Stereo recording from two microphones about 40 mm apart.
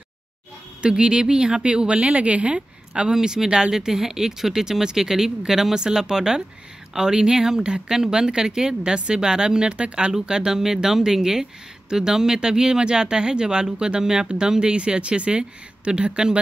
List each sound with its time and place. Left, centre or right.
0.8 s speech: right
2.9 s speech: centre